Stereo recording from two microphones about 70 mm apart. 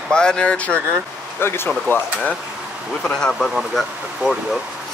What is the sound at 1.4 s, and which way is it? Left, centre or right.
Speech, left.